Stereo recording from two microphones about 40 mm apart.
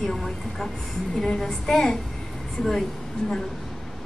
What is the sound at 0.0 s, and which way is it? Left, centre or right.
A woman's voice, centre.